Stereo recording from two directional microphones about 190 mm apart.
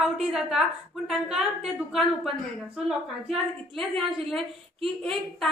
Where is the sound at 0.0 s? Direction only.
Centre (ahead or behind).